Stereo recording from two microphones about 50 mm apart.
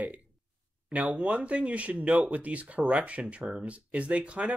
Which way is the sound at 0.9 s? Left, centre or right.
Right.